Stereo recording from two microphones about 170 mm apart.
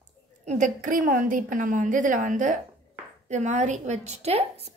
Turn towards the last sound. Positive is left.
turn(degrees=-40)  # may be behind; listen again after turning